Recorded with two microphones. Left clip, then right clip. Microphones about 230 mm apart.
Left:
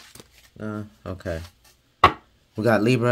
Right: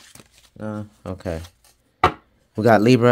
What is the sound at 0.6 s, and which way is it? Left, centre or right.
Speech, right.